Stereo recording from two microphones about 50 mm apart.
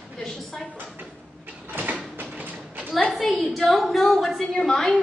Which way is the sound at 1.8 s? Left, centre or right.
Right.